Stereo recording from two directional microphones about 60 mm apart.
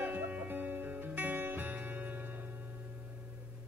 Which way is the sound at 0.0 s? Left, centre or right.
Right.